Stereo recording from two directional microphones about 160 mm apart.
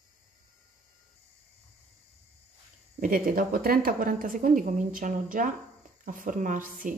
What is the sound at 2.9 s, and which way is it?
A woman's voice, 60° right (ahead or behind).